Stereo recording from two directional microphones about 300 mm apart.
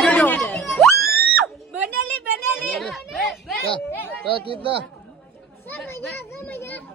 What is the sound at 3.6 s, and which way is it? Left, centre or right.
Speech, centre.